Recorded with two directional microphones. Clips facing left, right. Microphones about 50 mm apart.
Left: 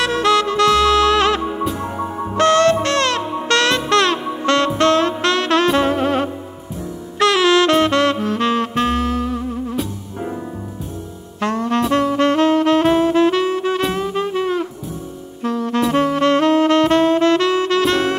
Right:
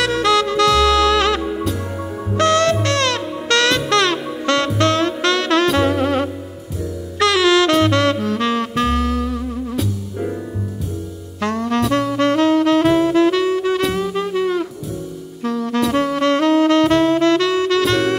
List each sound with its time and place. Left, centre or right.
0.0 s saxophone: left
1.4 s music: centre
2.3 s brass instrument: left
3.4 s saxophone: left
3.9 s music: left
4.2 s music: centre
4.7 s music: left
7.2 s saxophone: left
11.9 s music: left
15.7 s saxophone: left